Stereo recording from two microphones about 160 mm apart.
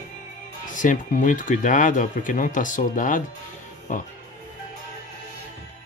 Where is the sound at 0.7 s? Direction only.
55° left (ahead or behind).